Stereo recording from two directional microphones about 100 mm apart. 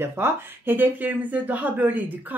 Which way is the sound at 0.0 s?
25° right (ahead or behind).